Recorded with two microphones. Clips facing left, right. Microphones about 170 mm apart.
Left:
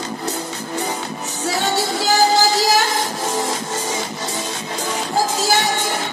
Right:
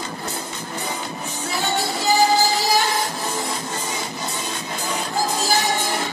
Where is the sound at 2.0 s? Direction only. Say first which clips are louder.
Left 1 dB; 90° left.